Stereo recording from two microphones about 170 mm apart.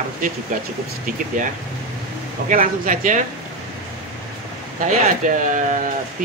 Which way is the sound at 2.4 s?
50° right (ahead or behind).